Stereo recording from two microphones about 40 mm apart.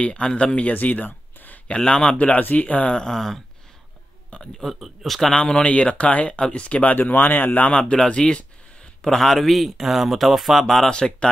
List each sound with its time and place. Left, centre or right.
0.0 s speech: left
0.7 s a sound: left
1.9 s speech: left
2.1 s speech: left
2.9 s speech: centre
4.4 s speech: centre
5.3 s speech: left
7.0 s speech: left
8.2 s speech: centre
10.9 s speech: left